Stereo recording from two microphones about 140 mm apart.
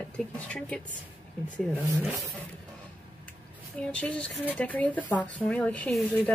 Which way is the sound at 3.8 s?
10° left (ahead or behind).